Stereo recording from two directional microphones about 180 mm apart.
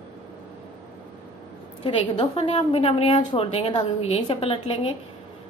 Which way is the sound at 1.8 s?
30° left (ahead or behind).